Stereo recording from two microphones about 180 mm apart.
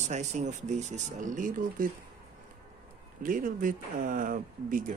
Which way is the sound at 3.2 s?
50° right (ahead or behind).